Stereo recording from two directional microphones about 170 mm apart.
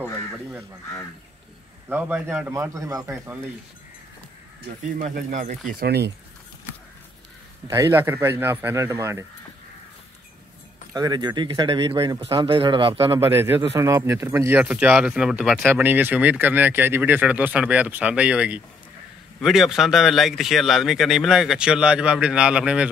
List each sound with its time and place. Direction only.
1.9 s speech: 10° right (ahead or behind)
4.9 s speech: 50° right (ahead or behind)
5.8 s speech: 70° right (ahead or behind)
7.6 s speech: 20° right (ahead or behind)
10.9 s speech: 25° right (ahead or behind)
13.3 s speech: 15° right (ahead or behind)